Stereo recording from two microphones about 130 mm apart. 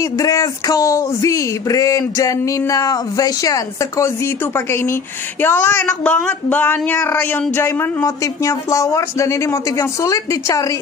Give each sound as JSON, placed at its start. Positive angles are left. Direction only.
{"t": 0.0, "sound": "speech", "side_deg": 25}